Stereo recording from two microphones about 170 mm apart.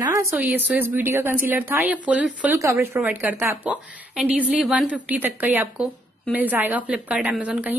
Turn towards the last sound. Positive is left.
turn(degrees=-10)  # may be behind; listen again after turning